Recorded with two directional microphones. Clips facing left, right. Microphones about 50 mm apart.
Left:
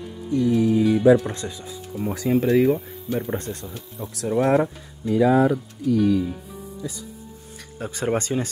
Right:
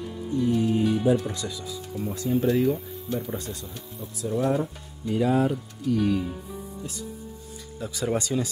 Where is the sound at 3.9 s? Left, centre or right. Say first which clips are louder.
Left 4 dB; left.